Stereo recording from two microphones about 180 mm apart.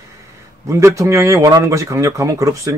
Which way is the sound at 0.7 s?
15° right (ahead or behind).